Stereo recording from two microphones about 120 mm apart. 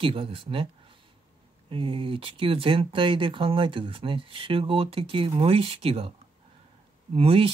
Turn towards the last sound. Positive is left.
turn(degrees=-55)  # may be behind; listen again after turning